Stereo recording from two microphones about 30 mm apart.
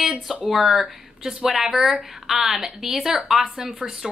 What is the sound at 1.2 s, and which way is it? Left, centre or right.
A woman's voice, centre.